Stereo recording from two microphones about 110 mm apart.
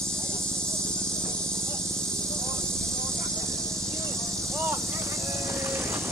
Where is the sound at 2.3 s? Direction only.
25° right (ahead or behind).